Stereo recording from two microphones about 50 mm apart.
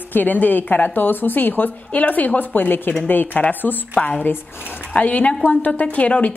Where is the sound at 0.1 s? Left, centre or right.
Left.